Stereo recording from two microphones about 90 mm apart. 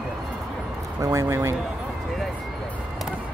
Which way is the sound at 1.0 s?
35° right (ahead or behind).